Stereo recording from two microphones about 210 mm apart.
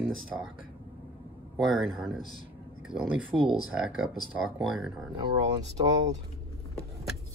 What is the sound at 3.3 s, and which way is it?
Speech, centre (ahead or behind).